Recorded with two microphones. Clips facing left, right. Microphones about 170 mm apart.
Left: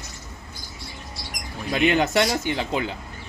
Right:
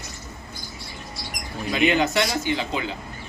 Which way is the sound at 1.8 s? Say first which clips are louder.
Left 1 dB; 50° left (ahead or behind).